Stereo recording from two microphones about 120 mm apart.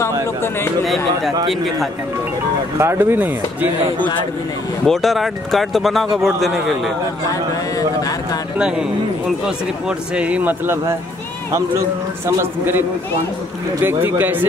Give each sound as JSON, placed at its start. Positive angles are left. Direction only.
{"t": 0.0, "sound": "speech", "side_deg": 20}
{"t": 2.8, "sound": "a man's voice", "side_deg": -20}
{"t": 4.8, "sound": "speech", "side_deg": 0}
{"t": 8.5, "sound": "speech", "side_deg": -5}
{"t": 9.8, "sound": "speech", "side_deg": -10}
{"t": 12.3, "sound": "a man's voice", "side_deg": -20}